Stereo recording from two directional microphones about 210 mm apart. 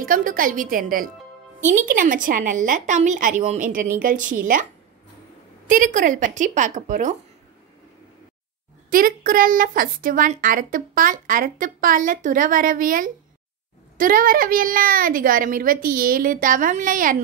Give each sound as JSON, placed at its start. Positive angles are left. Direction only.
{"t": 0.0, "sound": "a woman's voice", "side_deg": -40}
{"t": 5.7, "sound": "a woman's voice", "side_deg": -40}
{"t": 8.9, "sound": "a woman's voice", "side_deg": -40}